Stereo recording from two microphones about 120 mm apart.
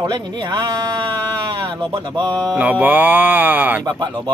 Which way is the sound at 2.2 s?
15° left (ahead or behind).